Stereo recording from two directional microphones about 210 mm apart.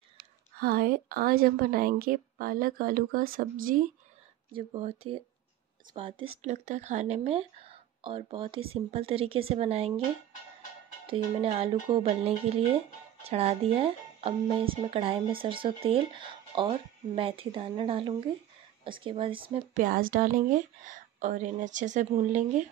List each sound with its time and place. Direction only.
0.6 s a woman's voice: 45° right (ahead or behind)
4.6 s speech: 30° right (ahead or behind)
6.4 s speech: 35° right (ahead or behind)
11.1 s speech: 30° right (ahead or behind)
19.5 s speech: 40° right (ahead or behind)